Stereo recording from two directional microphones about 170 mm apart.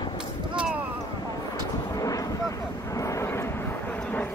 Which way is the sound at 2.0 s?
20° left (ahead or behind).